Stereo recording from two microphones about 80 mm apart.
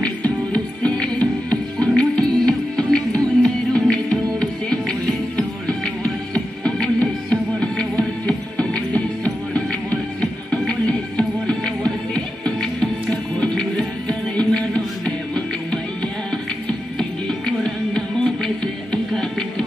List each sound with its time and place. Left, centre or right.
0.0 s music: centre
17.5 s music: centre